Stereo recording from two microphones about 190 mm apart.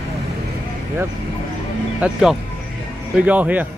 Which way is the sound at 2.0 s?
5° right (ahead or behind).